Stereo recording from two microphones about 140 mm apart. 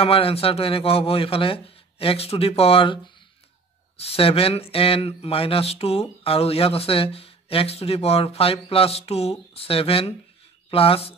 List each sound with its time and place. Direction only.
0.0 s speech: 45° left (ahead or behind)